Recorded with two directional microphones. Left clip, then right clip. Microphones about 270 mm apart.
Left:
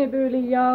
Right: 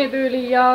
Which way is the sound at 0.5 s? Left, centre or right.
Left.